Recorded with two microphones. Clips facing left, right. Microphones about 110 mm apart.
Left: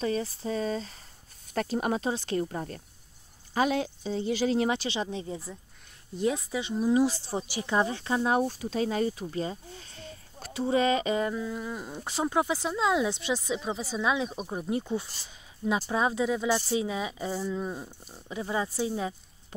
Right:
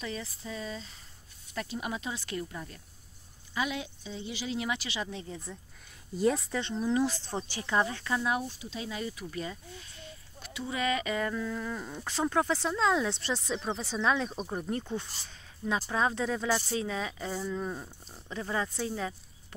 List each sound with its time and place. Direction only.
0.0 s speech: 35° left (ahead or behind)
2.4 s speech: 45° left (ahead or behind); by 5.4 s 20° left (ahead or behind)
6.1 s speech: centre (ahead or behind); by 9.2 s 40° left (ahead or behind)
9.2 s speech: 30° left (ahead or behind)